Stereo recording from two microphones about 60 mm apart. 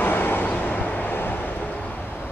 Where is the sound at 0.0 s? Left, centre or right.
Left.